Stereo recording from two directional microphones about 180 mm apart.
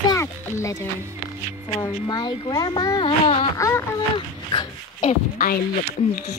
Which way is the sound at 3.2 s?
35° left (ahead or behind).